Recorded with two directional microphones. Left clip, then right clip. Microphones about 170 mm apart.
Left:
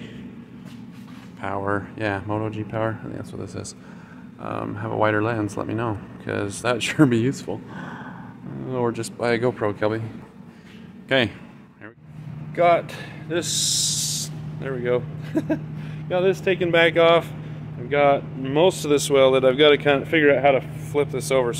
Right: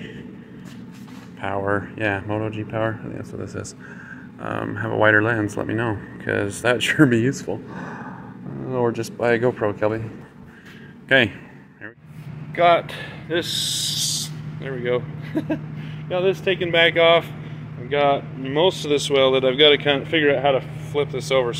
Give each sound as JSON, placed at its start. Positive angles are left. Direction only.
{"t": 1.4, "sound": "speech", "side_deg": 0}
{"t": 4.4, "sound": "speech", "side_deg": -10}
{"t": 11.1, "sound": "a man's voice", "side_deg": 0}
{"t": 12.5, "sound": "speech", "side_deg": 20}
{"t": 14.0, "sound": "spray", "side_deg": 45}
{"t": 14.7, "sound": "speech", "side_deg": 30}